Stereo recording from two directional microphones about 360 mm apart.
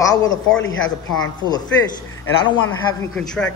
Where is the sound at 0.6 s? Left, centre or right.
Left.